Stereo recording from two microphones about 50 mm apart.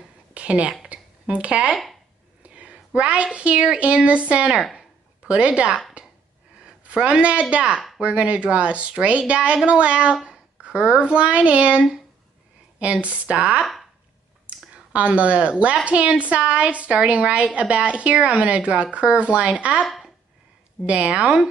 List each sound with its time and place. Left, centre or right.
0.3 s a sound: right
3.3 s speech: right
4.7 s a sound: right
6.6 s speech: right
14.4 s clicking: right
15.6 s speech: right
20.8 s speech: right